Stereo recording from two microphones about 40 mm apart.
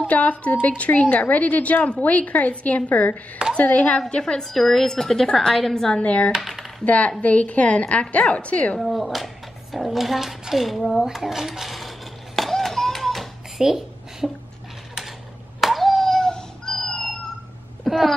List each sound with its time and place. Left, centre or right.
0.1 s a woman's voice: left
4.2 s a woman's voice: centre
5.9 s a woman's voice: left
6.4 s speech: centre
6.8 s a woman's voice: left
8.7 s speech: centre
11.1 s cutlery: centre
12.4 s music: centre
13.6 s a sound: centre
15.6 s a sound: centre
17.8 s wail: centre